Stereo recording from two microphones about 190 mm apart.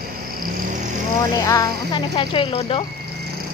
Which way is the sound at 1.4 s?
20° left (ahead or behind).